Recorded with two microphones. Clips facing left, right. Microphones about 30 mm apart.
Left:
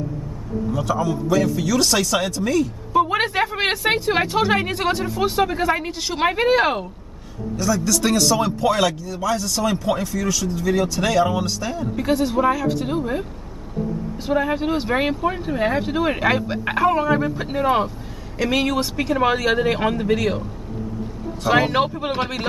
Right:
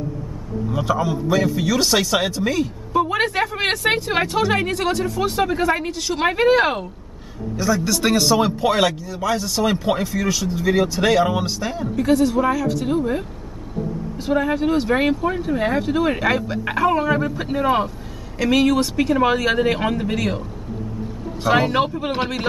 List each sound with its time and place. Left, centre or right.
0.7 s a man's voice: right
3.1 s speech: centre
6.2 s speech: centre
7.5 s a man's voice: centre
12.0 s speech: centre
14.2 s speech: centre
21.5 s speech: centre